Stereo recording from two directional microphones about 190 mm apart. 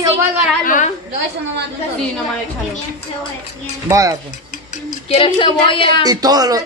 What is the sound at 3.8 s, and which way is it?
Speech, 15° right (ahead or behind).